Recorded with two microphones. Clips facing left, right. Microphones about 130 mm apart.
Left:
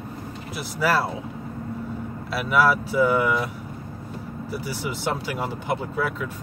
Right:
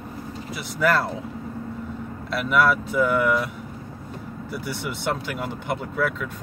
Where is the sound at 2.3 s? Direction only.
5° left (ahead or behind).